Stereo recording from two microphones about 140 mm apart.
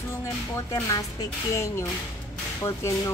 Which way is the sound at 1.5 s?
20° left (ahead or behind).